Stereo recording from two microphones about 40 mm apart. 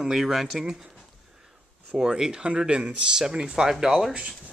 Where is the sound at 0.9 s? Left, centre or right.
Centre.